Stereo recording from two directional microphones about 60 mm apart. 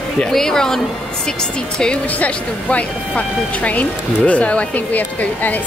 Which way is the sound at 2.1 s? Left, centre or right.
Left.